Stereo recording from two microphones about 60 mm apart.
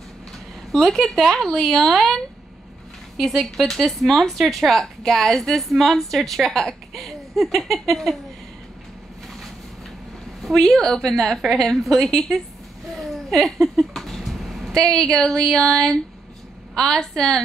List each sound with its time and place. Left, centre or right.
0.7 s a woman's voice: centre
3.2 s speech: centre
10.4 s a woman's voice: centre